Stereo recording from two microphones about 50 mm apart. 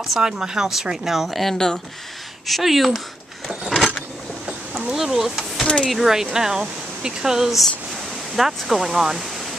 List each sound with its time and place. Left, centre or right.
0.0 s speech: centre
4.9 s speech: centre
5.6 s speech: centre
5.9 s speech: centre